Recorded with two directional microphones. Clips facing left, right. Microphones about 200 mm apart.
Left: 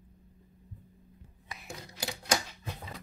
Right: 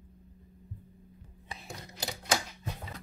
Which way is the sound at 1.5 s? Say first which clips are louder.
Right 2 dB; 30° right (ahead or behind).